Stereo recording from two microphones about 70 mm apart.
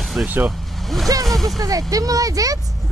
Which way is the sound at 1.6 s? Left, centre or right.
Right.